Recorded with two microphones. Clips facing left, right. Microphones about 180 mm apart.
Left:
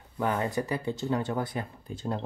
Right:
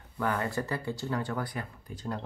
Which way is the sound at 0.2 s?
20° left (ahead or behind).